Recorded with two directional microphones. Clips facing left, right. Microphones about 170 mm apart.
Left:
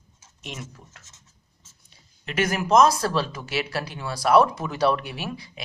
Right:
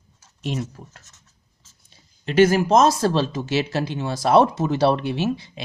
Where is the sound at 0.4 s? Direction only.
35° right (ahead or behind).